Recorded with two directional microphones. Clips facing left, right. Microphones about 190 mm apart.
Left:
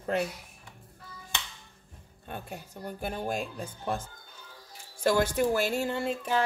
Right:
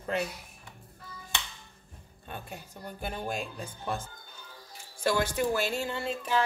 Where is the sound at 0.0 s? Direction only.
45° left (ahead or behind).